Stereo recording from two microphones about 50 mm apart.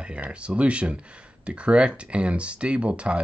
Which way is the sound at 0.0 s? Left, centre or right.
Right.